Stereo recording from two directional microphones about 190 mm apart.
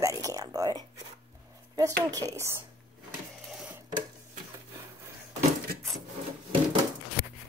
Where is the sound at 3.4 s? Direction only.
5° right (ahead or behind).